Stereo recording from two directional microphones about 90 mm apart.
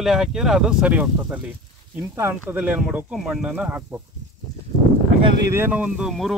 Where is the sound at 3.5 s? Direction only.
20° right (ahead or behind).